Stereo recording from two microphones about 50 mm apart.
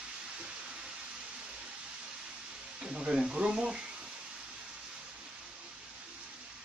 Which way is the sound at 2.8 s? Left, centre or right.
Centre.